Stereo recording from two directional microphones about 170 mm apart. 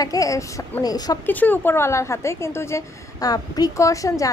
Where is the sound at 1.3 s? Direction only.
10° left (ahead or behind).